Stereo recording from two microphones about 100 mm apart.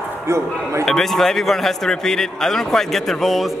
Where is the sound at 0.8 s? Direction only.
5° left (ahead or behind).